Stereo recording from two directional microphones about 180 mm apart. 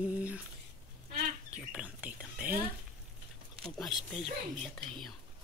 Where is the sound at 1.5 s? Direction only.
5° right (ahead or behind).